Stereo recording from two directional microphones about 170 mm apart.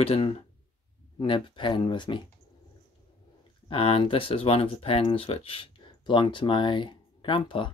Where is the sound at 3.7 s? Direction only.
35° left (ahead or behind).